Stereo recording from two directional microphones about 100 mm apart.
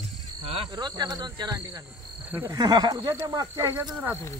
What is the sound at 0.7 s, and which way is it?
Speech, 45° right (ahead or behind).